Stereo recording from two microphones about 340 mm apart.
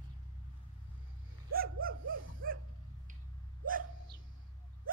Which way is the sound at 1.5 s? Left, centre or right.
Right.